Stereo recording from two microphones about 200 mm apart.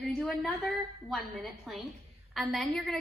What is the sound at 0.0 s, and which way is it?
A woman's voice, centre (ahead or behind).